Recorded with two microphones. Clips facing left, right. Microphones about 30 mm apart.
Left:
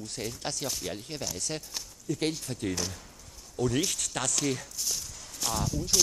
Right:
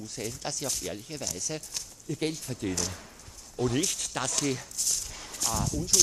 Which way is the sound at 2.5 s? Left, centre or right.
Centre.